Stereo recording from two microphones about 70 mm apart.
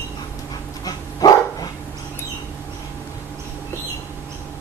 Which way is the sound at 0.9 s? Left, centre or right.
Left.